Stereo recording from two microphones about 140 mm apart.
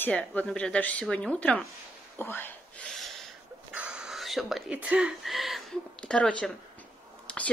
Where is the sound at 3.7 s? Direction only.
10° right (ahead or behind).